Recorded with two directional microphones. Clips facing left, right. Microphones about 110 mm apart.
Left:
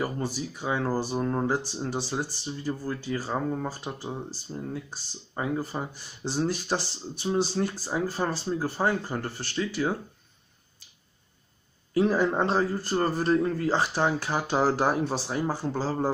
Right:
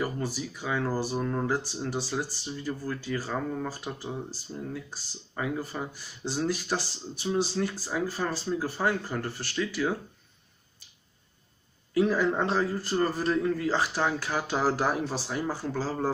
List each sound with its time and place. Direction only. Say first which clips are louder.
0.0 s speech: left 1 dB; 25° left (ahead or behind)
11.9 s speech: left 1 dB; 30° left (ahead or behind)